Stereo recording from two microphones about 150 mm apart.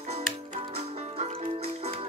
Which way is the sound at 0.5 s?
45° right (ahead or behind).